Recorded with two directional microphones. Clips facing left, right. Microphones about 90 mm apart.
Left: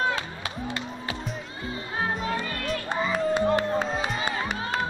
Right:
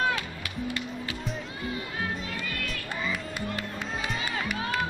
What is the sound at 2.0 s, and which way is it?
Music, 30° left (ahead or behind).